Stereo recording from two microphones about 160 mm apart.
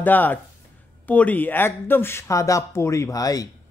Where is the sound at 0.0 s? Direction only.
10° left (ahead or behind).